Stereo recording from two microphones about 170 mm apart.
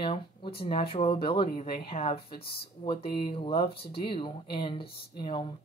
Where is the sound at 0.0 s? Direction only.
30° left (ahead or behind).